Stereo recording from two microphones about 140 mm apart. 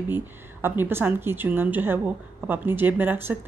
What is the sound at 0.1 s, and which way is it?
Speech, 15° right (ahead or behind).